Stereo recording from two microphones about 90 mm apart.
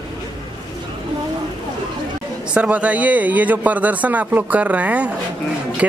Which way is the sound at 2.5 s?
15° right (ahead or behind).